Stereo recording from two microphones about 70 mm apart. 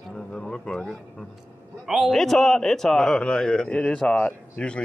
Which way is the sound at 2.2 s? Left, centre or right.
Centre.